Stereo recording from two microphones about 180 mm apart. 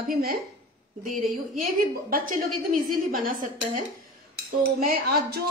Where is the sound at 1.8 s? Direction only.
50° right (ahead or behind).